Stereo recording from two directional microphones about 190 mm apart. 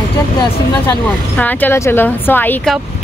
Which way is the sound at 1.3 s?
10° left (ahead or behind).